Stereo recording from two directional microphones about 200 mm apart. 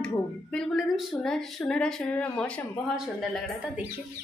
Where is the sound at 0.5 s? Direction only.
Centre (ahead or behind).